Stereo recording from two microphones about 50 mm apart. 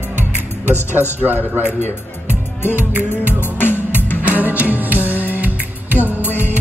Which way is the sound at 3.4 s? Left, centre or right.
Left.